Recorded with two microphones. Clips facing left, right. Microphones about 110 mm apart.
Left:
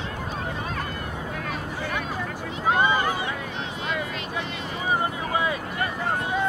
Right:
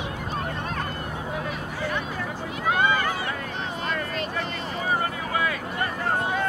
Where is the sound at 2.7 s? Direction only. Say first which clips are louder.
Left 1 dB; 20° left (ahead or behind).